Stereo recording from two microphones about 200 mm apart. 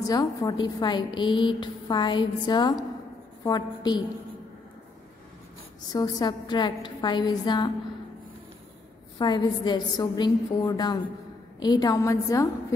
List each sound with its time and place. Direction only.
0.0 s a woman's voice: 20° left (ahead or behind)
5.9 s a woman's voice: 20° left (ahead or behind)
9.2 s a woman's voice: 20° left (ahead or behind)